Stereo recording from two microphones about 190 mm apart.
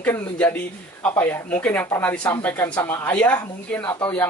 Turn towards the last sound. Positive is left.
turn(degrees=10)  # may be behind; listen again after turning